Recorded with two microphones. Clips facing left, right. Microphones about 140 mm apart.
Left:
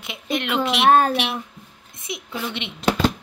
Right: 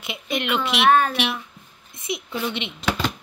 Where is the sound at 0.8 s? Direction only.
35° left (ahead or behind).